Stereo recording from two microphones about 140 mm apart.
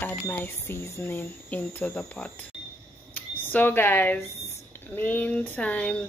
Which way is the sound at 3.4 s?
15° left (ahead or behind).